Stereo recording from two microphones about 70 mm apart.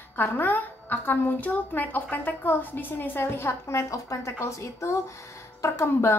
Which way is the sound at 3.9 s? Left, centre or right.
Left.